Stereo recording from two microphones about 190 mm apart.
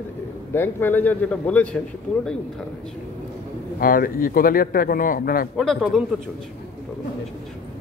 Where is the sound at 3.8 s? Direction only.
50° left (ahead or behind).